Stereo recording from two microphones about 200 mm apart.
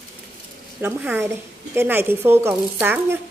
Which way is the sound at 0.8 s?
10° right (ahead or behind).